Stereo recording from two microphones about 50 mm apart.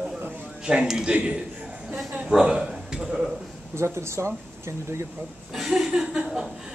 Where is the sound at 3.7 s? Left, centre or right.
Right.